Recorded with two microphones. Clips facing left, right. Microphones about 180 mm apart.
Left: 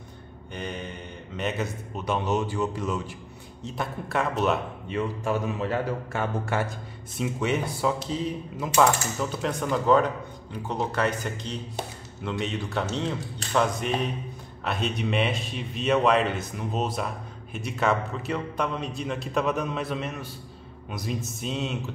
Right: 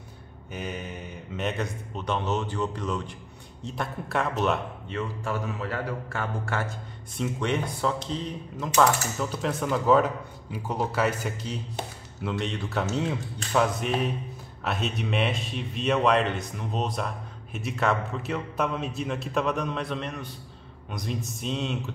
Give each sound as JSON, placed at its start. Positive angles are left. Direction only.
{"t": 0.5, "sound": "a man's voice", "side_deg": -5}
{"t": 4.8, "sound": "speech", "side_deg": 15}
{"t": 7.2, "sound": "a man's voice", "side_deg": 5}